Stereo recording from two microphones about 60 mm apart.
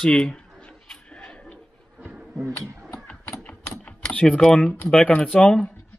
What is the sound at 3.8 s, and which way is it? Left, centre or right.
Typing, centre.